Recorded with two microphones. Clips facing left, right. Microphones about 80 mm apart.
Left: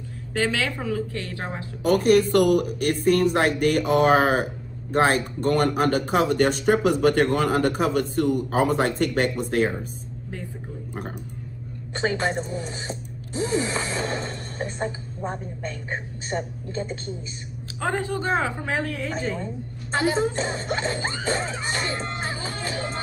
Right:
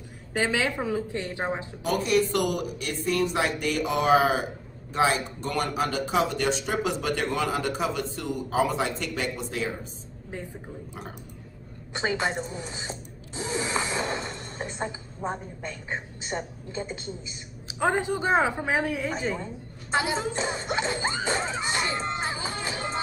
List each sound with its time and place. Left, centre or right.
0.3 s speech: centre
1.8 s speech: left
12.2 s speech: centre
20.3 s music: centre